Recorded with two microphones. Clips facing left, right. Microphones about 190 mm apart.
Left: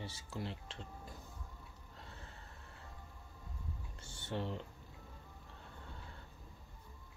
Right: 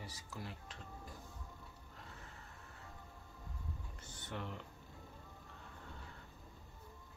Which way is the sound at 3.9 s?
30° left (ahead or behind).